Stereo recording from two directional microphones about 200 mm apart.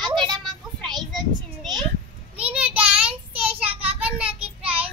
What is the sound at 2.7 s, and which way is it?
Child singing, 5° right (ahead or behind).